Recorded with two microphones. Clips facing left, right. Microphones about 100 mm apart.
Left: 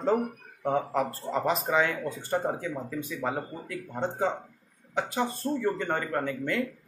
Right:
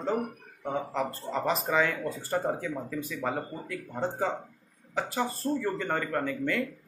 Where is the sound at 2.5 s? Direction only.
10° left (ahead or behind).